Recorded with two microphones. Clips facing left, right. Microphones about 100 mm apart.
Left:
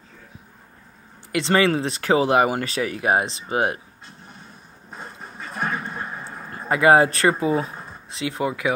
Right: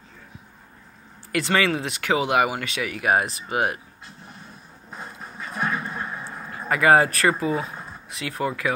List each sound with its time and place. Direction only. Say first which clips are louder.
1.3 s speech: left 3 dB; 30° left (ahead or behind)
4.9 s a sound: even; centre (ahead or behind)
6.7 s speech: left 2 dB; 25° left (ahead or behind)